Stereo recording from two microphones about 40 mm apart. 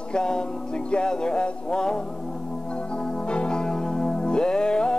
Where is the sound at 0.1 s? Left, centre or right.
Centre.